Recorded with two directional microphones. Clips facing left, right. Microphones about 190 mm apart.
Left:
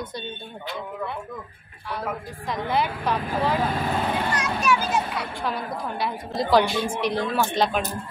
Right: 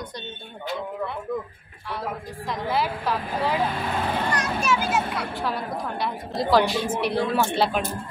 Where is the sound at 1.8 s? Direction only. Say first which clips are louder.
Left 1 dB; centre (ahead or behind).